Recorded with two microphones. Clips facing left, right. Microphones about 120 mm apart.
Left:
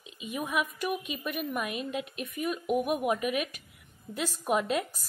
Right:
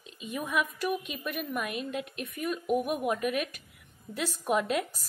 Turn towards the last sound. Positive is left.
turn(degrees=0)  # may be behind; listen again after turning